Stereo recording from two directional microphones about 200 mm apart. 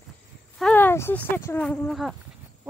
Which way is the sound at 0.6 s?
5° left (ahead or behind).